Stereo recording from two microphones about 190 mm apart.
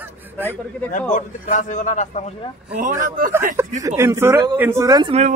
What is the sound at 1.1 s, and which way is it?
A man's voice, 40° left (ahead or behind).